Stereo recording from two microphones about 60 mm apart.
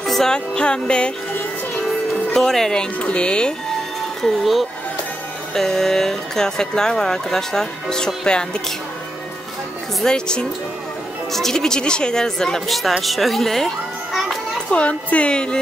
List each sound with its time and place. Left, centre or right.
0.0 s speech: centre
2.3 s speech: centre
4.2 s a child's voice: centre
10.0 s a child's voice: centre
14.7 s speech: left